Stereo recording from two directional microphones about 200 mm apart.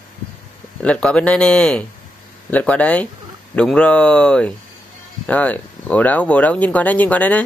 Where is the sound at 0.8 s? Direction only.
5° left (ahead or behind).